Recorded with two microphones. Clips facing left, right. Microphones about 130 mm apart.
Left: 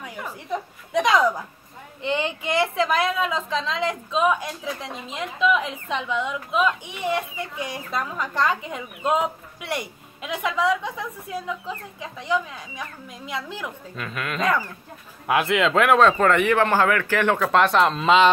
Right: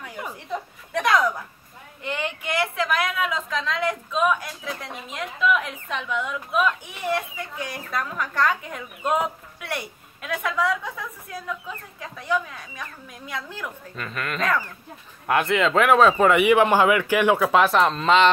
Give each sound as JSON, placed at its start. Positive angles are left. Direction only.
{"t": 0.5, "sound": "a woman's voice", "side_deg": 15}
{"t": 13.9, "sound": "speech", "side_deg": 0}